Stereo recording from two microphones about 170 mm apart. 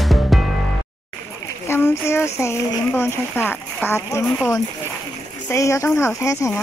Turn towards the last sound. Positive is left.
turn(degrees=20)  # may be behind; listen again after turning